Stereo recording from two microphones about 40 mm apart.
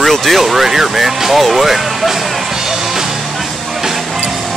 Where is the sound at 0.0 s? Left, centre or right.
Centre.